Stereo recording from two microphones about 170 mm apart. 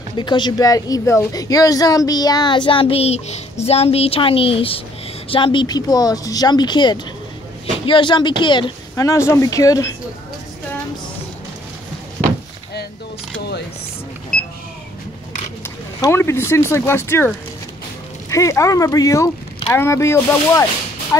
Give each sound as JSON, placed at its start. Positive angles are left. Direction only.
{"t": 0.1, "sound": "a woman's voice", "side_deg": 25}
{"t": 15.6, "sound": "speech", "side_deg": 15}
{"t": 18.3, "sound": "a woman's voice", "side_deg": 20}